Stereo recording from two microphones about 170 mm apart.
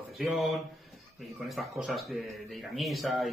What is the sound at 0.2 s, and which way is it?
Speech, centre (ahead or behind).